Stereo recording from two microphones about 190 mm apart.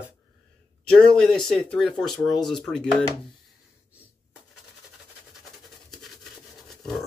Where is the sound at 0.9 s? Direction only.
5° left (ahead or behind).